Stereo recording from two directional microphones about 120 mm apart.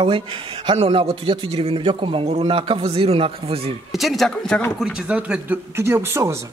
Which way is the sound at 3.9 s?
Centre (ahead or behind).